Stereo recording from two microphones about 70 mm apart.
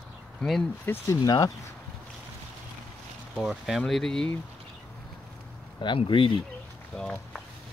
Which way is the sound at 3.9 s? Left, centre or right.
Centre.